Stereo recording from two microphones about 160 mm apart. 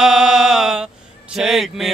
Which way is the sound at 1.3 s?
Centre (ahead or behind).